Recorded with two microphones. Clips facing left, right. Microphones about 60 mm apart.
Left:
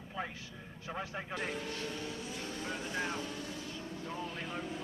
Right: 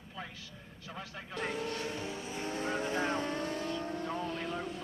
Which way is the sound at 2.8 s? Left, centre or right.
Right.